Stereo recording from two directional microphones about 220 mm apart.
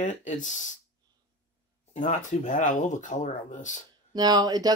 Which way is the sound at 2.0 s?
35° left (ahead or behind).